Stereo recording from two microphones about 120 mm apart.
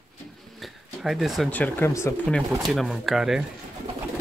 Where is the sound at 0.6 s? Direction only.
Centre (ahead or behind).